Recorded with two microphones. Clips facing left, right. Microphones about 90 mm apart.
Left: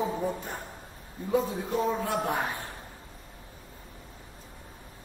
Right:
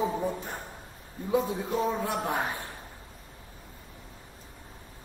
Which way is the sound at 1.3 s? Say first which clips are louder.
Even; 15° right (ahead or behind).